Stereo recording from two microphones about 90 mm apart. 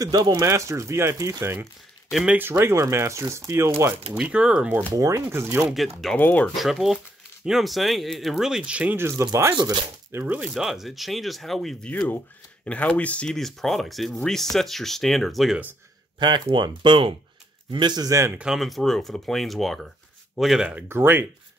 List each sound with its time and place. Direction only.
0.0 s speech: 45° right (ahead or behind)
0.3 s speech: 30° right (ahead or behind)
4.2 s speech: 10° right (ahead or behind)
4.9 s speech: 35° right (ahead or behind)
6.1 s speech: 20° left (ahead or behind)
6.5 s speech: centre (ahead or behind)
8.9 s speech: 25° right (ahead or behind)
9.6 s speech: 55° right (ahead or behind)
10.1 s speech: 20° right (ahead or behind)
10.4 s speech: 5° right (ahead or behind)
11.9 s speech: 20° left (ahead or behind); by 15.5 s centre (ahead or behind)
16.2 s speech: 60° right (ahead or behind)
18.4 s speech: 5° right (ahead or behind)
20.7 s speech: 25° right (ahead or behind)